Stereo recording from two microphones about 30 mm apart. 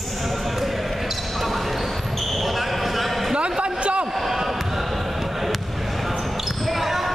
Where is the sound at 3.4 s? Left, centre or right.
Right.